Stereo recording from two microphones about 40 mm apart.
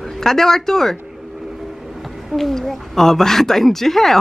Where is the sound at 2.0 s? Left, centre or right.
Centre.